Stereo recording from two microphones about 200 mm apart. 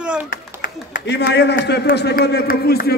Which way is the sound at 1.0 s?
60° left (ahead or behind).